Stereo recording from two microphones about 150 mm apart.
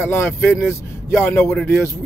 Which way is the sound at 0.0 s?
15° left (ahead or behind).